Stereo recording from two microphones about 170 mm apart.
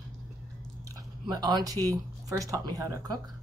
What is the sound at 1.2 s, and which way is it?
Speech, 25° right (ahead or behind).